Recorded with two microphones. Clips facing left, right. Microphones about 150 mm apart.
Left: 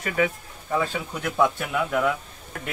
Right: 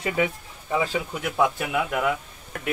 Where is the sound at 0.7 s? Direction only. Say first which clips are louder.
Right 1 dB; 10° right (ahead or behind).